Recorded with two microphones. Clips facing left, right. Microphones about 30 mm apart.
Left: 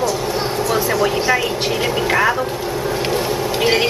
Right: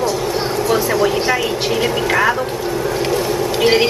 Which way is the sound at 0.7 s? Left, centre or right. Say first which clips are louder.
Right 2 dB; centre.